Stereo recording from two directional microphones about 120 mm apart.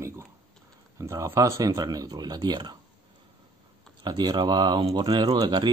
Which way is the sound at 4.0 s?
35° right (ahead or behind).